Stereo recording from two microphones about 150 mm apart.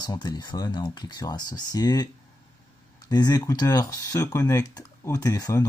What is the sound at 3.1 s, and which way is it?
Speech, 25° left (ahead or behind).